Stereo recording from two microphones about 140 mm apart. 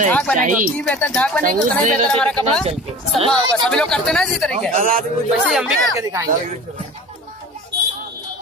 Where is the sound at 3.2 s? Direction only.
35° right (ahead or behind).